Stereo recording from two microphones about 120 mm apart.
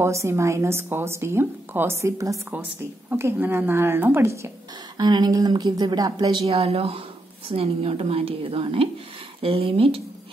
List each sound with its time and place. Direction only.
0.0 s a woman's voice: 25° right (ahead or behind)
4.9 s a woman's voice: 35° right (ahead or behind)
6.4 s a woman's voice: 55° right (ahead or behind)